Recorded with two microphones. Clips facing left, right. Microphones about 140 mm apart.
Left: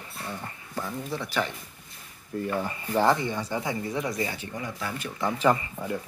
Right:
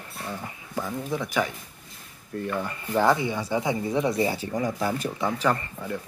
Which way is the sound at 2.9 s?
Centre (ahead or behind).